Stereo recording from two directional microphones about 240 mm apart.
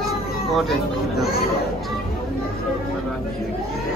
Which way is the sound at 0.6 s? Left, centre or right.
Centre.